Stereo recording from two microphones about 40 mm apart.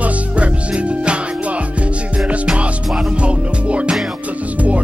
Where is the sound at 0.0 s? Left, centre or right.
Right.